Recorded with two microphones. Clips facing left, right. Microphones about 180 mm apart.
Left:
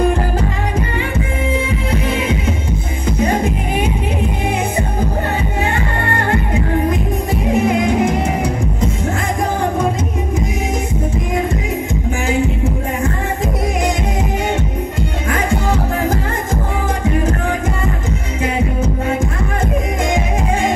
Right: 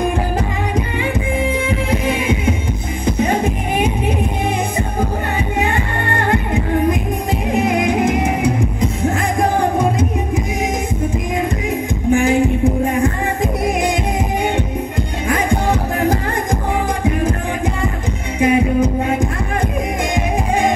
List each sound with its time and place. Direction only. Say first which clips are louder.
12.2 s music: right 2 dB; 15° right (ahead or behind)